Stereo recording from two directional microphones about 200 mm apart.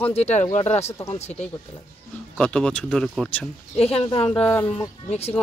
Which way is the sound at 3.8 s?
30° left (ahead or behind).